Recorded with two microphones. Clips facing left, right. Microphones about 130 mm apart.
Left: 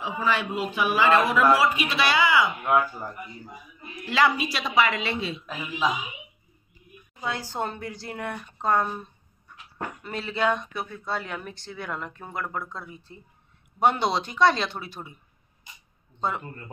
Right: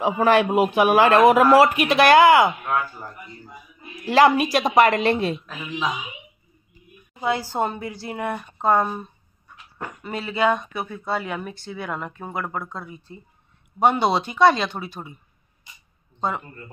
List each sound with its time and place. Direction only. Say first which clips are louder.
0.0 s a man's voice: right 9 dB; 60° right (ahead or behind)
2.6 s speech: left 2 dB; 15° left (ahead or behind)
4.0 s a woman's voice: right 7 dB; 45° right (ahead or behind)
7.2 s speech: right 7 dB; 10° right (ahead or behind)
10.0 s speech: right 4 dB; 5° right (ahead or behind)